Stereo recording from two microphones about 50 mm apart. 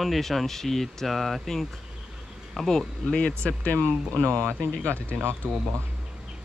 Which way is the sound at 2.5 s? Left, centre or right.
Centre.